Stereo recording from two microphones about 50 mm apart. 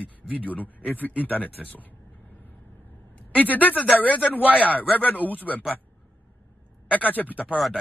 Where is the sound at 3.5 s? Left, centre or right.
Left.